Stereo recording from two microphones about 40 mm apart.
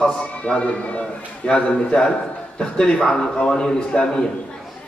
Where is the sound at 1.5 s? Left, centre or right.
Left.